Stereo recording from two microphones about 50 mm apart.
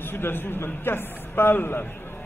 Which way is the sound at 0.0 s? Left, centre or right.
Left.